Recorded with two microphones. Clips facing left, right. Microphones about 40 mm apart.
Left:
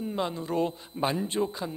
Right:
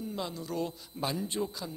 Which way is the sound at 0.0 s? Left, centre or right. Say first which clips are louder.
Left 6 dB; left.